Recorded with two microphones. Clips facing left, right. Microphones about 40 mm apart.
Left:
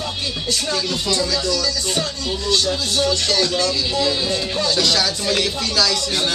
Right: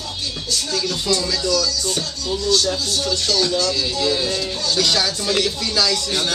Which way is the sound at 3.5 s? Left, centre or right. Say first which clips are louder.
Even; left.